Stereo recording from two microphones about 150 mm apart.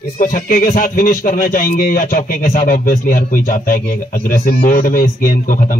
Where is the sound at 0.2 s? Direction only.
70° left (ahead or behind).